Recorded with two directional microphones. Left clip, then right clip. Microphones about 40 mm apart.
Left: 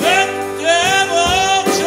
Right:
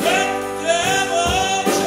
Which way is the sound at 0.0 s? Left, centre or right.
Left.